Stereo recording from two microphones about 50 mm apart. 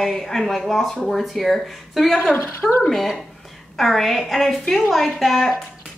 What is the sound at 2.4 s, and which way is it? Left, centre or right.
Speech, left.